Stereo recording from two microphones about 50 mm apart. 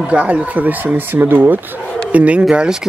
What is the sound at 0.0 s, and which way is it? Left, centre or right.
Speech, right.